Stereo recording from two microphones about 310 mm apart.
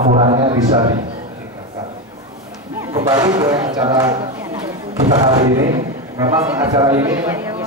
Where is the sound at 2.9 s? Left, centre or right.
Centre.